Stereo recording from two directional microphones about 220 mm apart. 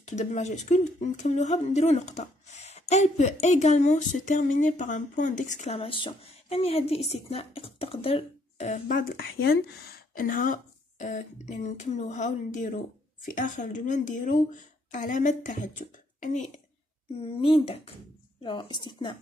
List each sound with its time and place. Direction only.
0.0 s speech: 30° left (ahead or behind)
17.6 s speech: 25° left (ahead or behind)